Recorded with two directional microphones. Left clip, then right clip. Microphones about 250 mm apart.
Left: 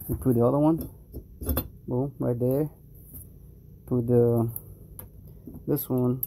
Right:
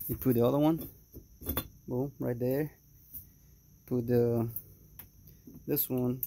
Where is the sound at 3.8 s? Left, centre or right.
Centre.